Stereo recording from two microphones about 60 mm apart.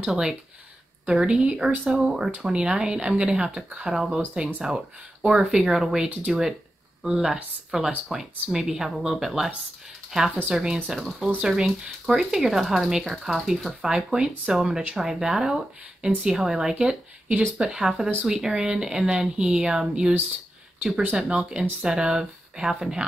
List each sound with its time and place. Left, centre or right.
0.1 s speech: centre
4.2 s speech: right